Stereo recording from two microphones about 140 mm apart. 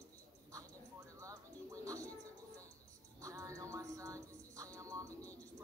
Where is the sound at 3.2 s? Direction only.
25° right (ahead or behind).